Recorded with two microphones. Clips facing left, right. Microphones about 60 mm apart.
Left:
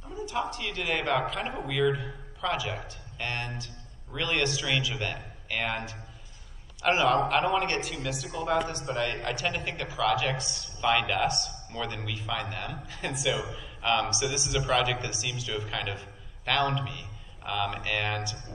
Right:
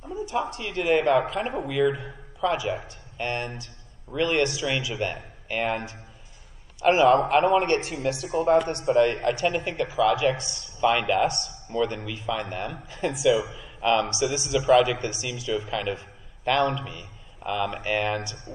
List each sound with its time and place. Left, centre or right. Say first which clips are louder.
0.3 s a man's voice: right 2 dB; right
8.9 s a man's voice: right 10 dB; right